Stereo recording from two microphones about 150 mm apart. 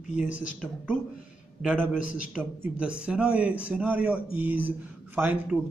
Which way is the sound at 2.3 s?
10° right (ahead or behind).